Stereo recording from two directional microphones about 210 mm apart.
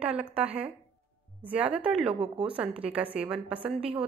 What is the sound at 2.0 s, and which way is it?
Speech, 25° right (ahead or behind).